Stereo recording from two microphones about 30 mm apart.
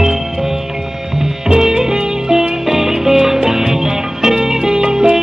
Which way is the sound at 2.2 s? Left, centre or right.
Centre.